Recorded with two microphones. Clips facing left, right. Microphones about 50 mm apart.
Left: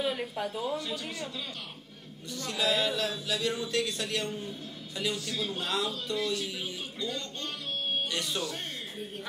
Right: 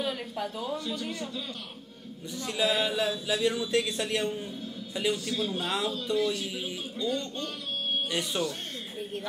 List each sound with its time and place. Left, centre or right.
0.0 s speech: centre
0.8 s a man's voice: centre
2.3 s a man's voice: centre